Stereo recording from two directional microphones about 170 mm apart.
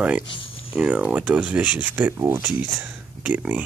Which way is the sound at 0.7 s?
5° right (ahead or behind).